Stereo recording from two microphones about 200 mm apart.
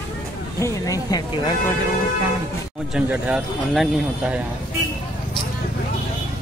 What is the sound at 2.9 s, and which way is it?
Speech, 5° right (ahead or behind).